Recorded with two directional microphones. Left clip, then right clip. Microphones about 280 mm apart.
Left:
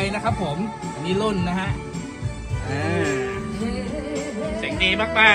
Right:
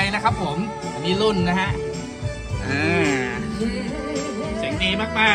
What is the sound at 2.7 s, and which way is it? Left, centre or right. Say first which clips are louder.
Music: right 3 dB; centre.